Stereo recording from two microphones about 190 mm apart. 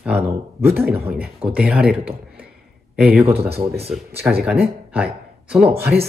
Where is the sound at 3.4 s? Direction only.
30° right (ahead or behind).